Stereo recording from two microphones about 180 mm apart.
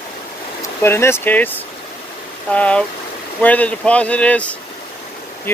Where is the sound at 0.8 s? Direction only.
15° left (ahead or behind).